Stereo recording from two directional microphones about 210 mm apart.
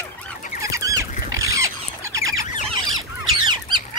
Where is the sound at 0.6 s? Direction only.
15° right (ahead or behind).